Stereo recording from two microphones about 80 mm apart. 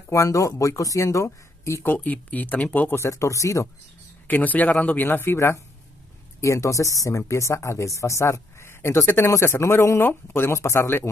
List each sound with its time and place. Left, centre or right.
0.1 s speech: left
2.0 s speech: centre
3.0 s speech: left
4.3 s speech: left